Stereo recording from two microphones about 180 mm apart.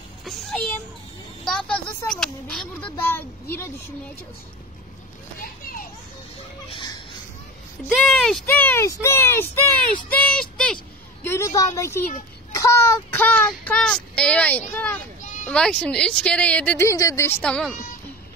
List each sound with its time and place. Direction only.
0.2 s a child's voice: centre (ahead or behind)
8.0 s speech: centre (ahead or behind)
11.2 s speech: 15° left (ahead or behind)
12.5 s child singing: 15° left (ahead or behind)
14.7 s speech: 10° left (ahead or behind)